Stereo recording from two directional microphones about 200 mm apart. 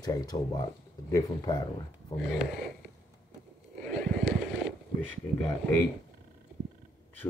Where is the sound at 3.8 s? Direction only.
5° left (ahead or behind).